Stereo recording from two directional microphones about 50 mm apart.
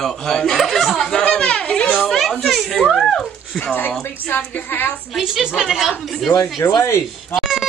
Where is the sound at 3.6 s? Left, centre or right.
Left.